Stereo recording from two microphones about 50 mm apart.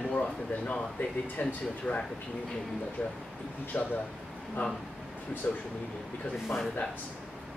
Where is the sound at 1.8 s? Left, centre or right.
Left.